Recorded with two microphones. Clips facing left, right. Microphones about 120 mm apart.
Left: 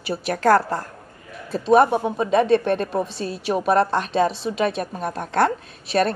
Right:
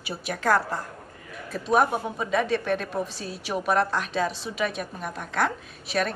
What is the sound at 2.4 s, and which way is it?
Speech, 60° left (ahead or behind).